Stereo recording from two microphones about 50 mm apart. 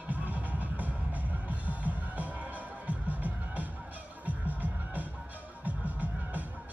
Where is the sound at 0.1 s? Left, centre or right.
Right.